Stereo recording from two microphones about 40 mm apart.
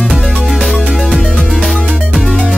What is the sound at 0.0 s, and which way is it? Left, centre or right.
Music, centre.